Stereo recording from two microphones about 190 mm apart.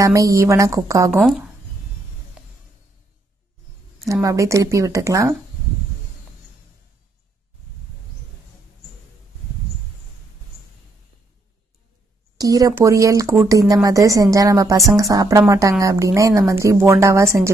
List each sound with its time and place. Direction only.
0.0 s a woman's voice: 15° right (ahead or behind)
1.1 s speech: centre (ahead or behind)
4.1 s a woman's voice: 15° right (ahead or behind)
12.4 s a woman's voice: 20° right (ahead or behind)